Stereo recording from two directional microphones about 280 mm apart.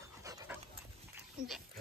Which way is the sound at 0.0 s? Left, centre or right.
Centre.